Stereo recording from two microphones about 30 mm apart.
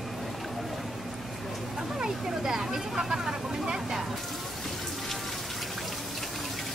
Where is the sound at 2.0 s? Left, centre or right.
Right.